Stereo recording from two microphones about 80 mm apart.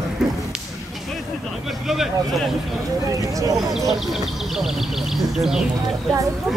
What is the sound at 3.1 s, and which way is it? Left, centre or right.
Speech, right.